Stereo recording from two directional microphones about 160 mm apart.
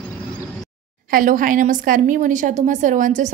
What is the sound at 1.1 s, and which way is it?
A woman's voice, 60° right (ahead or behind).